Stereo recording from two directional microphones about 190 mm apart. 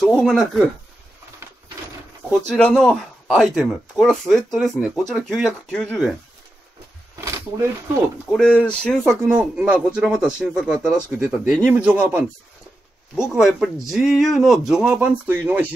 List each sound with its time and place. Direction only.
0.0 s speech: 5° left (ahead or behind)
2.5 s speech: 5° left (ahead or behind)
8.3 s speech: 5° left (ahead or behind)